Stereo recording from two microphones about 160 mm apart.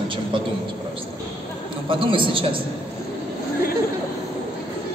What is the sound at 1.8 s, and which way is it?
Speech, 30° right (ahead or behind).